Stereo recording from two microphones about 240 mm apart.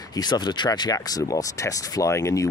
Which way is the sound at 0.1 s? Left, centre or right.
Centre.